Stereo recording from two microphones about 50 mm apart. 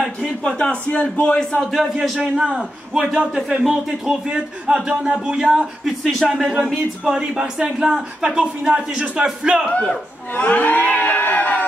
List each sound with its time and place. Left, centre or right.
0.4 s a man's voice: centre
1.8 s speech: centre
2.1 s speech: centre
5.9 s speech: centre
6.2 s speech: centre
9.7 s a man's voice: left
10.3 s a sound: left